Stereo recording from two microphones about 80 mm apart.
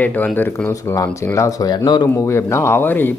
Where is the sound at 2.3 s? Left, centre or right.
Left.